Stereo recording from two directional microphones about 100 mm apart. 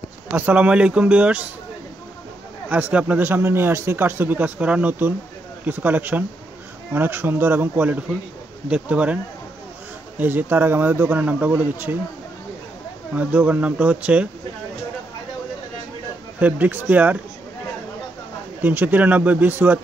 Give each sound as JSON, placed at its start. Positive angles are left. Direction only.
{"t": 0.3, "sound": "speech", "side_deg": -15}
{"t": 2.7, "sound": "speech", "side_deg": -15}
{"t": 13.1, "sound": "speech", "side_deg": -15}
{"t": 16.3, "sound": "speech", "side_deg": -15}
{"t": 18.6, "sound": "speech", "side_deg": -20}